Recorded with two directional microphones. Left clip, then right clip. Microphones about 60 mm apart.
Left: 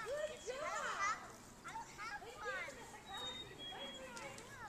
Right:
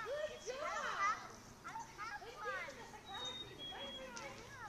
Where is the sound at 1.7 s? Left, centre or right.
Left.